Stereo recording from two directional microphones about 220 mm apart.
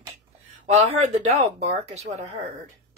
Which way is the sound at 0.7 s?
30° right (ahead or behind).